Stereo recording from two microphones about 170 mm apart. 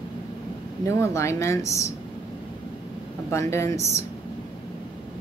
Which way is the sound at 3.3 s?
15° left (ahead or behind).